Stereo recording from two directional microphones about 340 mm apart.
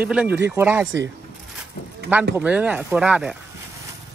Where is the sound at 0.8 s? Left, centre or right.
Right.